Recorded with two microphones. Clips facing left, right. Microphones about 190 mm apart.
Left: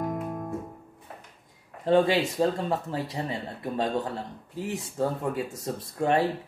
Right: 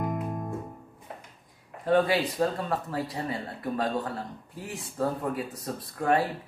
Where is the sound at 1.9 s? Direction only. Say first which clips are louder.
Left 2 dB; 25° left (ahead or behind).